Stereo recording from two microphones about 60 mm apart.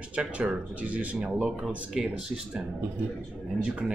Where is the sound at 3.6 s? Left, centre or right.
Centre.